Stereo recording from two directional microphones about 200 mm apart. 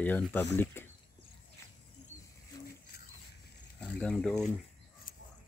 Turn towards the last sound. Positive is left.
turn(degrees=5)  # may be behind; listen again after turning